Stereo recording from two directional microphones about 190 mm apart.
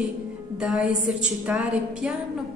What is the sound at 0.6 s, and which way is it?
A woman's voice, 5° right (ahead or behind).